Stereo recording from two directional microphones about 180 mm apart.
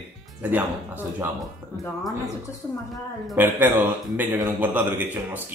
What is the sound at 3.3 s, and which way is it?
Speech, 10° right (ahead or behind).